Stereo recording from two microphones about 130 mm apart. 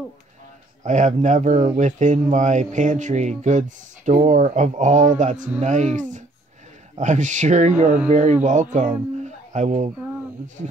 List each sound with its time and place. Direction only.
0.8 s speech: 70° right (ahead or behind)